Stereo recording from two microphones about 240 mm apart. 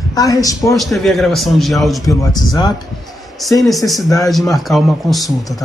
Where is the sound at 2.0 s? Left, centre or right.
Centre.